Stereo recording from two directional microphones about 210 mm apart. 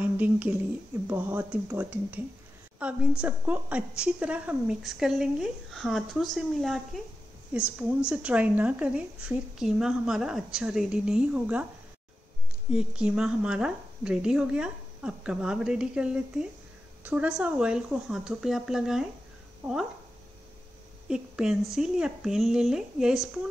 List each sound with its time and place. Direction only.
0.0 s a sound: 10° right (ahead or behind)
1.0 s a woman's voice: 10° right (ahead or behind)
12.7 s a woman's voice: 5° right (ahead or behind)
21.1 s a woman's voice: 5° right (ahead or behind)